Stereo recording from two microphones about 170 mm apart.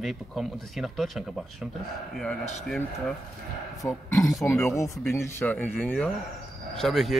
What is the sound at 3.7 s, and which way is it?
Speech, 20° left (ahead or behind).